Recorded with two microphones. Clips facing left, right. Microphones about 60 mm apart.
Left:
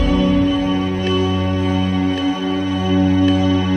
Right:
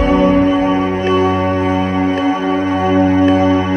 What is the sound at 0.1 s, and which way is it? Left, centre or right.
Music, right.